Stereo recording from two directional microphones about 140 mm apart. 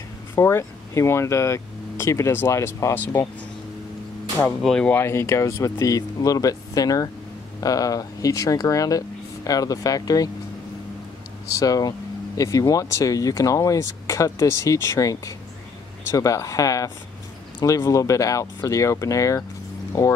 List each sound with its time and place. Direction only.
0.4 s speech: 20° left (ahead or behind)
4.4 s speech: 5° left (ahead or behind); by 10.3 s 25° left (ahead or behind)
11.5 s speech: 25° left (ahead or behind)